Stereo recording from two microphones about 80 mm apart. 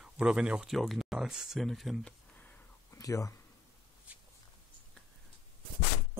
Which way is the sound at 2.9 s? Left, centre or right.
Left.